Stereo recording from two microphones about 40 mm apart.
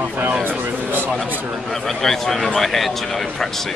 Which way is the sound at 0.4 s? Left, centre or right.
Right.